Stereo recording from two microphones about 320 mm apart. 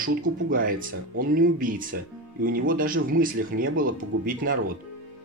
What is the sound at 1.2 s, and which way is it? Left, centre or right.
Speech, right.